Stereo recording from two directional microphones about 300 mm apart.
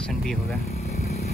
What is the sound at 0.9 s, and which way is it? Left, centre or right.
Vehicle, left.